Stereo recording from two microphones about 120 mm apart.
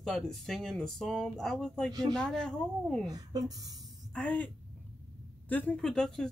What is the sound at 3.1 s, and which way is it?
Speech, 30° right (ahead or behind).